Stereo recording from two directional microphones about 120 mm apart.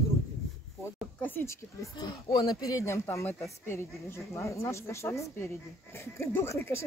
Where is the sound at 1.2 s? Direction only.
15° left (ahead or behind).